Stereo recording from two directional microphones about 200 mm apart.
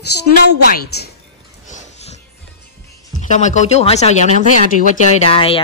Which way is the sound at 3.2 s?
35° left (ahead or behind).